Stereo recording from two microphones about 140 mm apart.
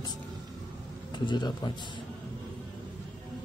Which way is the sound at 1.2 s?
35° left (ahead or behind).